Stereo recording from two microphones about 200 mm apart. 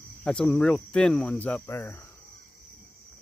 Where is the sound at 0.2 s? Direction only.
5° left (ahead or behind).